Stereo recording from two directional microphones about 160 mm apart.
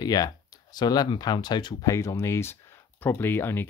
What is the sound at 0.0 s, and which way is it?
Speech, 25° left (ahead or behind).